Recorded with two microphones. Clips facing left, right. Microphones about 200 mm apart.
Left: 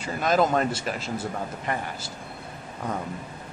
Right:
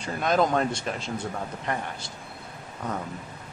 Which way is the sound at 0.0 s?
Centre (ahead or behind).